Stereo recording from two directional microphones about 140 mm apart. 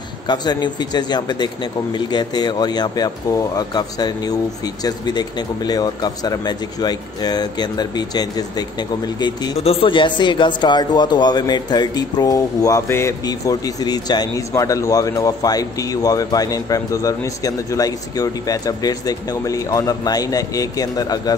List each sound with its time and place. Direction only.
0.3 s a man's voice: 30° left (ahead or behind)
9.6 s a man's voice: 45° left (ahead or behind); by 21.4 s 25° left (ahead or behind)